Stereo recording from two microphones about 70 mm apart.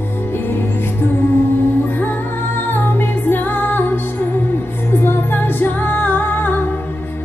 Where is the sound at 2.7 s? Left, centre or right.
Left.